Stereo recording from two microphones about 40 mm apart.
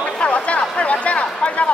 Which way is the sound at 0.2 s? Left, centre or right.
Left.